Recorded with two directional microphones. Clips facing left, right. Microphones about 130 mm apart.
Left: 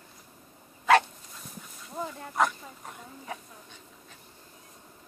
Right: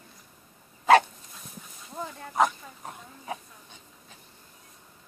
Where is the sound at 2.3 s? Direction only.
20° right (ahead or behind).